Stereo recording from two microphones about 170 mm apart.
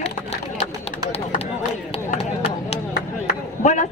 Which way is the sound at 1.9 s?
35° left (ahead or behind).